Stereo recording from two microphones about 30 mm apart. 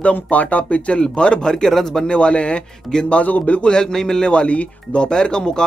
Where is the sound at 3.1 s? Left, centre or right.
Left.